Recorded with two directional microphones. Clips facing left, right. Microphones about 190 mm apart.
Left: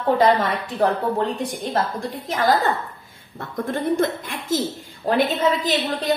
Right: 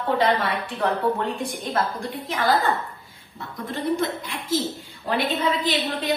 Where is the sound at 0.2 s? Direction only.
45° left (ahead or behind).